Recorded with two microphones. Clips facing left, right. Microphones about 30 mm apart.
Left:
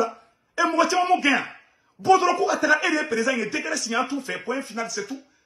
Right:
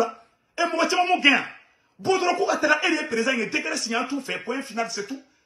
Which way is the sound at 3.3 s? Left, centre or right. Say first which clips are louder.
Right 1 dB; right.